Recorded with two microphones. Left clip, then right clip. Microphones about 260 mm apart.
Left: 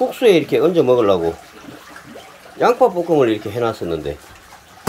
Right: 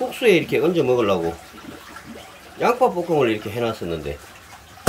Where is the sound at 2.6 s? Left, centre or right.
Centre.